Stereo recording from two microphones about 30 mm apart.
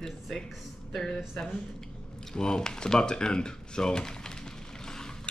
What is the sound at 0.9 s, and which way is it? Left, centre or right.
Speech, centre.